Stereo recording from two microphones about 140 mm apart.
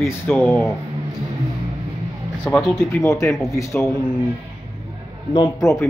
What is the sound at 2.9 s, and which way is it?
A man's voice, 20° left (ahead or behind).